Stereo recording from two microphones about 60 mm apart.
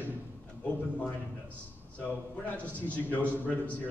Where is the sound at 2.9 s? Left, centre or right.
Left.